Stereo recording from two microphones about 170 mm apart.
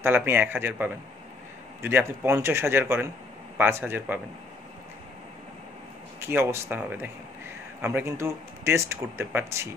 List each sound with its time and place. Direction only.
0.0 s speech: 10° right (ahead or behind)
6.2 s speech: 15° right (ahead or behind)